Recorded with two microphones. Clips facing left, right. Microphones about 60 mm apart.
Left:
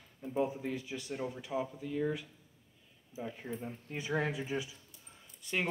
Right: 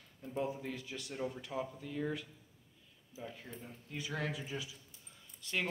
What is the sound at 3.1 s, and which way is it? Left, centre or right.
Speech, left.